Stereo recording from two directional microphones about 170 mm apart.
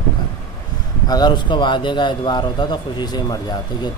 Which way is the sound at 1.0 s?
25° left (ahead or behind).